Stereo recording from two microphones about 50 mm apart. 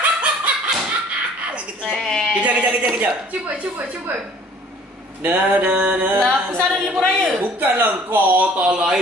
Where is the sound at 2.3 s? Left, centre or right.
Right.